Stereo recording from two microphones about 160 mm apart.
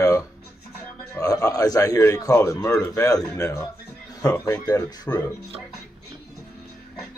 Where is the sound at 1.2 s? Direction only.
20° left (ahead or behind).